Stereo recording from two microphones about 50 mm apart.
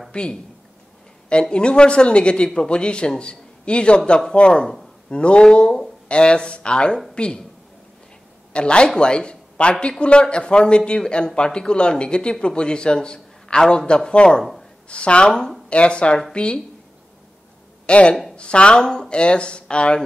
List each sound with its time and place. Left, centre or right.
0.1 s speech: centre
1.4 s speech: centre
8.5 s speech: centre
14.4 s a sound: centre
14.9 s speech: left
17.8 s speech: left